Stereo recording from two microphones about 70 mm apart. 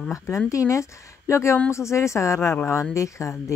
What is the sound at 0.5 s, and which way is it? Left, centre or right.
Speech, left.